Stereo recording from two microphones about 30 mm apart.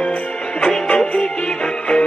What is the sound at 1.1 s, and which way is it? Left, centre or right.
Music, left.